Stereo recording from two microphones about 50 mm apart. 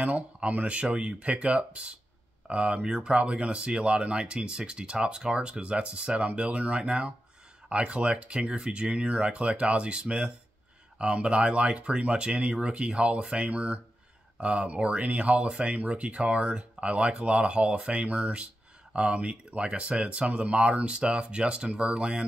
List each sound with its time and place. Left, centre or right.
0.0 s speech: right